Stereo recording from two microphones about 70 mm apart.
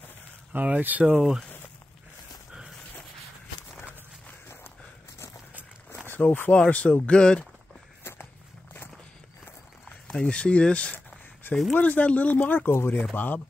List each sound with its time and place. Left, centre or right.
0.5 s speech: right
6.0 s speech: left
8.0 s walk: left
10.1 s speech: centre
11.4 s speech: left
11.8 s speech: centre